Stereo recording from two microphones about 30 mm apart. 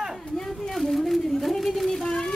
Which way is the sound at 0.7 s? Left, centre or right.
Centre.